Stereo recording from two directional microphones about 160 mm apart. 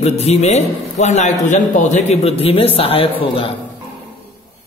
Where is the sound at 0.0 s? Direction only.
40° left (ahead or behind).